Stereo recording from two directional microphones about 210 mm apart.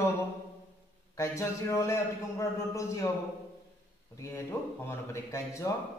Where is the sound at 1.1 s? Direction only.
15° left (ahead or behind).